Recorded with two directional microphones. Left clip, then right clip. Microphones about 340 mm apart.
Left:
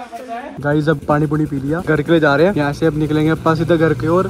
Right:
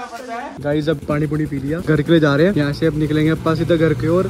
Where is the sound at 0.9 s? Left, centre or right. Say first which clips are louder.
Left 4 dB; left.